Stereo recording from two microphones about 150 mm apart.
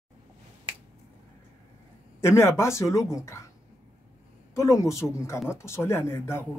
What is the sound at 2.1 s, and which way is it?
Speech, 15° left (ahead or behind).